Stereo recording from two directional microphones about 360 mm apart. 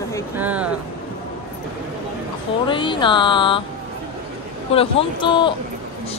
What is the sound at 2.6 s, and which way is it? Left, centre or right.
Speech, centre.